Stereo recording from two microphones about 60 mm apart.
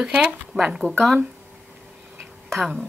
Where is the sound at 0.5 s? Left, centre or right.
Centre.